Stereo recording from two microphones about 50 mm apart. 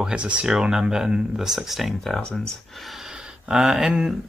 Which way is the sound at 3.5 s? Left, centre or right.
Centre.